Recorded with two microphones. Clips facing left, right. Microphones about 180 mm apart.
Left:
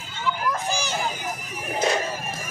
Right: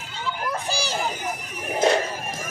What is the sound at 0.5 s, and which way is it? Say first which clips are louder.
Children playing: left 1 dB; 35° right (ahead or behind).